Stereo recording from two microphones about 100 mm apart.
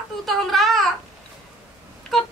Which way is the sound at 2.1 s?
Centre (ahead or behind).